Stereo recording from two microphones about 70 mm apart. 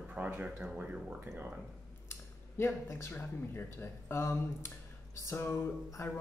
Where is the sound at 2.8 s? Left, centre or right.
Left.